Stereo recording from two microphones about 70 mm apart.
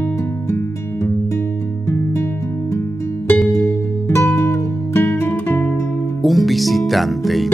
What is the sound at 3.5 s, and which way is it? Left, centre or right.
Music, left.